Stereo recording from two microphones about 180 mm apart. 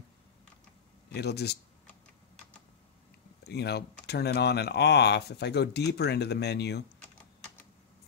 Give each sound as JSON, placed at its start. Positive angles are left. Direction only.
{"t": 1.1, "sound": "speech", "side_deg": 65}
{"t": 3.4, "sound": "speech", "side_deg": 65}